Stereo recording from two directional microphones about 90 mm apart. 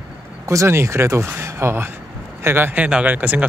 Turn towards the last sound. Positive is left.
turn(degrees=-20)  # may be behind; listen again after turning